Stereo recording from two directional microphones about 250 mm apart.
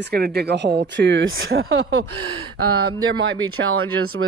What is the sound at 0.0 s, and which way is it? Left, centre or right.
Speech, right.